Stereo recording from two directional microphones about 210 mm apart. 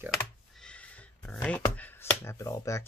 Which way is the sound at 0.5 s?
5° left (ahead or behind).